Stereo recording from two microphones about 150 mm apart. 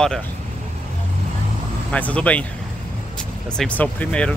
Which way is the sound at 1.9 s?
10° left (ahead or behind).